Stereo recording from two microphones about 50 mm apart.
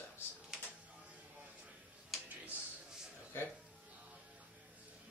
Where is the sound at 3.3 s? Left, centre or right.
Left.